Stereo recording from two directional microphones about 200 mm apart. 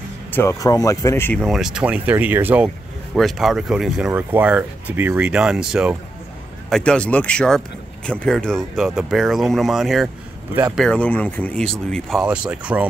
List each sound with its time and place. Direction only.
0.3 s speech: 15° left (ahead or behind); by 12.8 s 5° right (ahead or behind)